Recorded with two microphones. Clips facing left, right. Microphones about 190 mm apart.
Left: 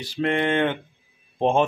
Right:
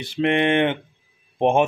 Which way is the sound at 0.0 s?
20° right (ahead or behind).